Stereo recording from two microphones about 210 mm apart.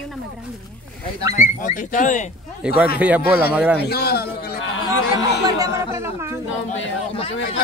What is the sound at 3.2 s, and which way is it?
A man's voice, 50° left (ahead or behind).